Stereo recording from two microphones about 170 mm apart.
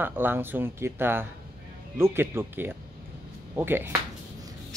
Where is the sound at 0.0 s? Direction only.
10° right (ahead or behind).